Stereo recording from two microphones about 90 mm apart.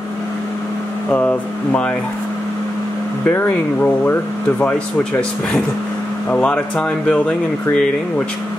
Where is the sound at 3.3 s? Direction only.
20° left (ahead or behind).